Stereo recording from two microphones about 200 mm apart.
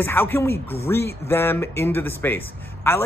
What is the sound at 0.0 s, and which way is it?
A man's voice, 10° left (ahead or behind).